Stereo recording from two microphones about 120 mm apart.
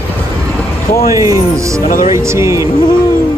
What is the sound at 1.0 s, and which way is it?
Speech, 25° right (ahead or behind).